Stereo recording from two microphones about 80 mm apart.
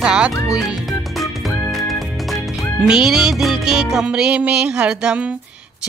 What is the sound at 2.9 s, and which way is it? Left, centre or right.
Music, centre.